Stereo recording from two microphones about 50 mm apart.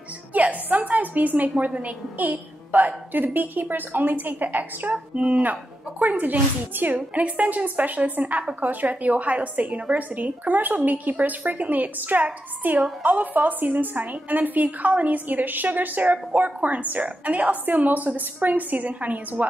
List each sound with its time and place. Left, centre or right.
0.3 s a woman's voice: right
4.9 s speech: right
5.4 s a woman's voice: right